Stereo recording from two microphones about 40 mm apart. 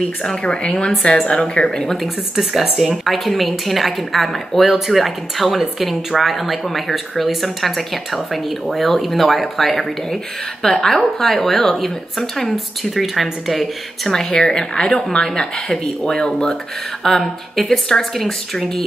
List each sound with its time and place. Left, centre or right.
0.4 s speech: left
1.7 s speech: centre
2.3 s speech: centre
3.1 s a woman's voice: centre
14.0 s speech: centre